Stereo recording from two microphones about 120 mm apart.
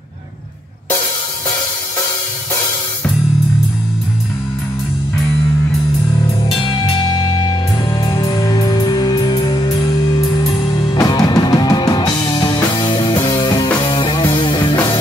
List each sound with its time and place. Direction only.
6.6 s music: 45° left (ahead or behind)
8.1 s music: 30° left (ahead or behind)
11.0 s music: 35° left (ahead or behind)